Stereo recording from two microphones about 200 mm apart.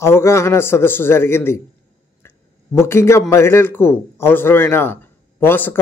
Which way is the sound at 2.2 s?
10° left (ahead or behind).